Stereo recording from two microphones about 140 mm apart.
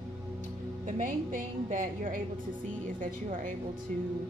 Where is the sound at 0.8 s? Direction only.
70° right (ahead or behind).